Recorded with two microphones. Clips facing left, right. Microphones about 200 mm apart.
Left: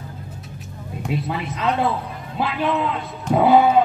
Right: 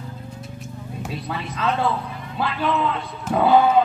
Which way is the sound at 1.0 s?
20° left (ahead or behind).